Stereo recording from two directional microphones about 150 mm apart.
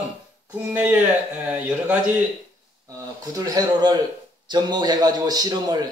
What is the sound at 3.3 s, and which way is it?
A man's voice, 25° right (ahead or behind).